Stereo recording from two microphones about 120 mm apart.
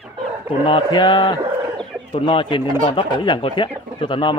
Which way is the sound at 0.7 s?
45° left (ahead or behind).